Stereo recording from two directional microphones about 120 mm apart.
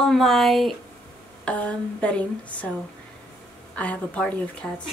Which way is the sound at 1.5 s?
10° left (ahead or behind).